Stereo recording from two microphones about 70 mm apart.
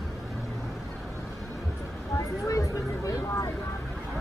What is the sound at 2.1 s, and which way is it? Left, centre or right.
Speech, left.